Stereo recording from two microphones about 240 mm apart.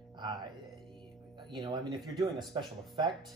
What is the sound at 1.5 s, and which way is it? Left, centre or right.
Speech, centre.